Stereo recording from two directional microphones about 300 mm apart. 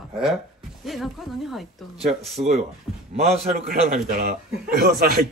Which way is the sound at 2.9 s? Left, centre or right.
Centre.